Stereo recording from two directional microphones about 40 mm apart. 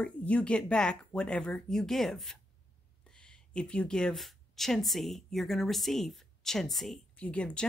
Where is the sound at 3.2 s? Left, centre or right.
Left.